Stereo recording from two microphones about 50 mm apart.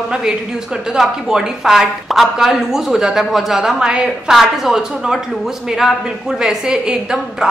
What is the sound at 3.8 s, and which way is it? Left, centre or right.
A woman's voice, centre.